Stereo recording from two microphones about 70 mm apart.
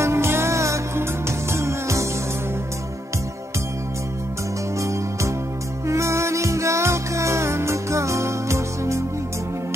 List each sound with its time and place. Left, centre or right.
0.0 s music: right
4.7 s music: right